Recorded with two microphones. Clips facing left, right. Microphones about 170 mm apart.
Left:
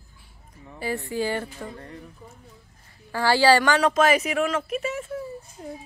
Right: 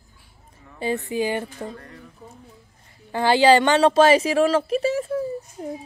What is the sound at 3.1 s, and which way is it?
A woman's voice, 20° right (ahead or behind).